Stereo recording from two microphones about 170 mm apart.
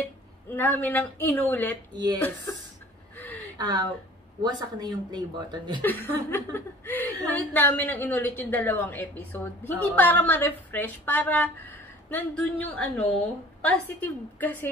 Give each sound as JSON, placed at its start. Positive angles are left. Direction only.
{"t": 0.5, "sound": "a woman's voice", "side_deg": 10}
{"t": 3.5, "sound": "speech", "side_deg": -25}
{"t": 5.8, "sound": "a woman's voice", "side_deg": 10}